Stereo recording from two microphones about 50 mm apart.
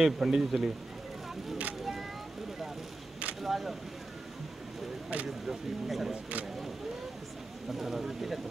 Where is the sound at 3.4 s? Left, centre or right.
Centre.